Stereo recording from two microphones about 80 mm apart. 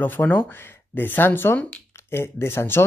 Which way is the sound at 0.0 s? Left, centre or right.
Left.